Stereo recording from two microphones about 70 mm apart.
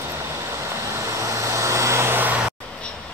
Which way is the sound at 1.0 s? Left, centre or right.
Right.